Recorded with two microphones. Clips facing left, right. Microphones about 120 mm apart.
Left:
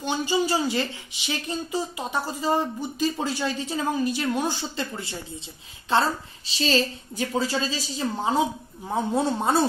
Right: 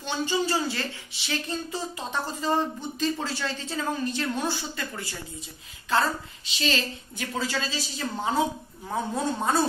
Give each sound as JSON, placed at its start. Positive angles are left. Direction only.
{"t": 0.0, "sound": "a woman's voice", "side_deg": 15}
{"t": 4.6, "sound": "a woman's voice", "side_deg": 25}
{"t": 8.0, "sound": "a woman's voice", "side_deg": 20}